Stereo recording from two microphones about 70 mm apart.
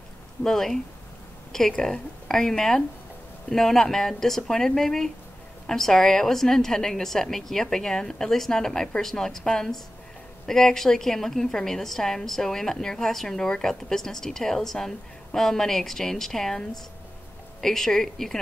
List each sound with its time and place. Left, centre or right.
0.4 s a woman's voice: centre